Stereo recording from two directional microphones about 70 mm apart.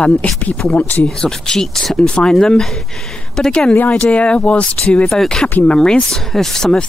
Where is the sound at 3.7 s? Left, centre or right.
Left.